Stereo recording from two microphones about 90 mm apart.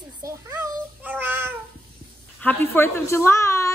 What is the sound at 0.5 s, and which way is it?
Cat, 20° right (ahead or behind).